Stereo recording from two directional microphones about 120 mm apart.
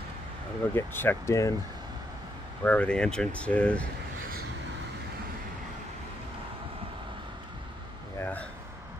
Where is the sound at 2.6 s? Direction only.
10° left (ahead or behind).